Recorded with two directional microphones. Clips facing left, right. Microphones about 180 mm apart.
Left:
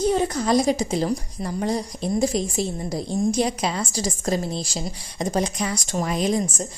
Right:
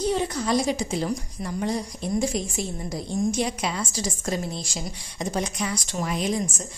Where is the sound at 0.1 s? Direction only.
45° left (ahead or behind).